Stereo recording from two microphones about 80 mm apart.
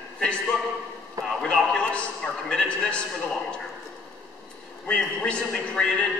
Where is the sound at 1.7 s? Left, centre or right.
Centre.